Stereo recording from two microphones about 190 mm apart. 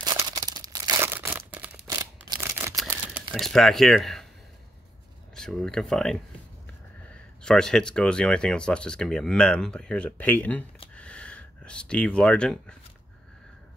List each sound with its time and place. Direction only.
0.0 s crumpling: 15° right (ahead or behind)
1.9 s scissors: 20° right (ahead or behind)
2.9 s crumpling: 10° right (ahead or behind)
3.3 s speech: centre (ahead or behind)
5.3 s speech: centre (ahead or behind)
11.0 s a sound: 5° left (ahead or behind)